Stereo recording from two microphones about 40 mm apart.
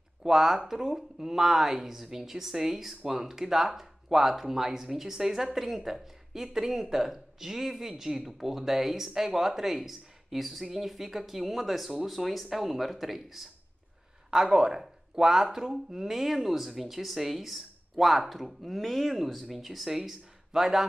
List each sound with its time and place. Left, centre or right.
0.2 s speech: centre
14.3 s speech: centre